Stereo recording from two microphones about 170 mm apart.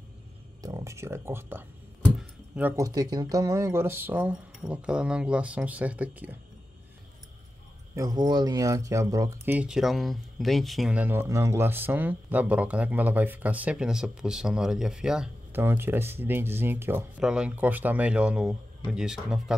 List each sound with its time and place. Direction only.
0.6 s speech: 20° right (ahead or behind)
7.9 s speech: 20° right (ahead or behind); by 19.5 s 5° right (ahead or behind)